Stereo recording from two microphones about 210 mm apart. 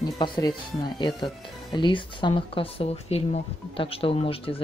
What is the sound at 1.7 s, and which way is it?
Speech, 20° left (ahead or behind).